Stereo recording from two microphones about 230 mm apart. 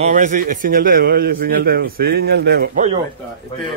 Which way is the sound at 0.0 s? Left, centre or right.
Right.